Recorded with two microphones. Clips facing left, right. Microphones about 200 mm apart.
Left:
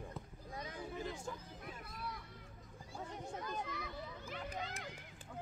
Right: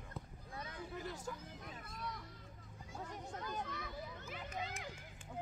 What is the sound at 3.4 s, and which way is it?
A child's voice, centre (ahead or behind).